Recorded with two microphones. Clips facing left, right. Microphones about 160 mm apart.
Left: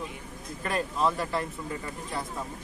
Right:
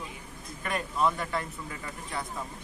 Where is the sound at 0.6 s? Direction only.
30° left (ahead or behind).